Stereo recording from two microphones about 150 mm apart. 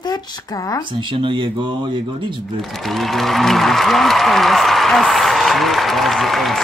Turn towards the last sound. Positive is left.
turn(degrees=0)  # may be behind; listen again after turning